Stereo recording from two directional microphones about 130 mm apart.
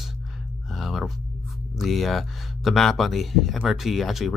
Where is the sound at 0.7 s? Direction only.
Centre (ahead or behind).